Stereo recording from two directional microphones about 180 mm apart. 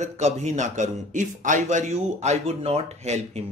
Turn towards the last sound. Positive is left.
turn(degrees=-35)  # may be behind; listen again after turning